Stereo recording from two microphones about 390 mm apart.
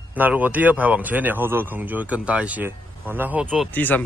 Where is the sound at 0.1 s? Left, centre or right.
Centre.